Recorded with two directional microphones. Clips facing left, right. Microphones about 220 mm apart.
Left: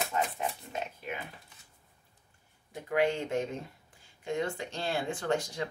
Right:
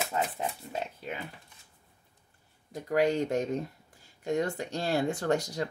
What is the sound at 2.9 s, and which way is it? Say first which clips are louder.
Speech: right 3 dB; 40° right (ahead or behind).